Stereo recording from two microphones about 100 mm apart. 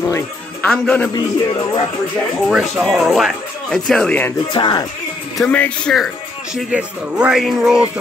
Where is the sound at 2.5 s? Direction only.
5° right (ahead or behind).